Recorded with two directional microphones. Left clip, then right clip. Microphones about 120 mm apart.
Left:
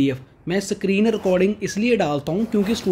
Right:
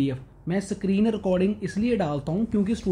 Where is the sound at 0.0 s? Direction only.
35° left (ahead or behind).